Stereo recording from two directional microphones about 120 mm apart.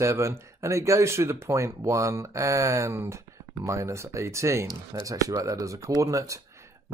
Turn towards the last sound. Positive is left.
turn(degrees=-25)  # may be behind; listen again after turning